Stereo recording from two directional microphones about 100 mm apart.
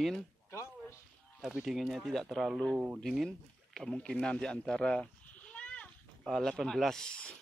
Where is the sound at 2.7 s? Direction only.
15° right (ahead or behind).